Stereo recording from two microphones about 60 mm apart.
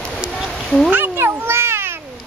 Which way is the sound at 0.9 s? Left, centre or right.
Right.